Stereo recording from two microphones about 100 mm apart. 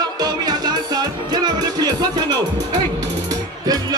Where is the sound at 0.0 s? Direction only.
45° right (ahead or behind).